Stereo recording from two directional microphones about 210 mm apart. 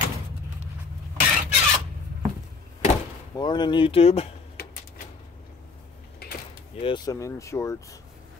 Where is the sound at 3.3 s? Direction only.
20° left (ahead or behind).